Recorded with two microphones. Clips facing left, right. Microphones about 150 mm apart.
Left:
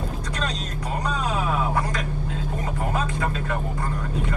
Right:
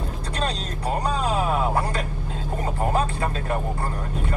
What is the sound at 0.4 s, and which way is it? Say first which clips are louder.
Speech: right 4 dB; 30° right (ahead or behind).